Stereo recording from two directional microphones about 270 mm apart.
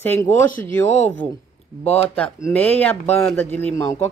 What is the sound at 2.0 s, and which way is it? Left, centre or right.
A woman's voice, centre.